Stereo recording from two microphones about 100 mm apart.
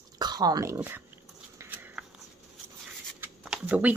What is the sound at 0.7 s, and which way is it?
Speech, 20° right (ahead or behind).